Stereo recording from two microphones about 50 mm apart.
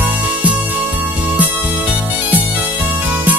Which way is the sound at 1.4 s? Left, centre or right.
Right.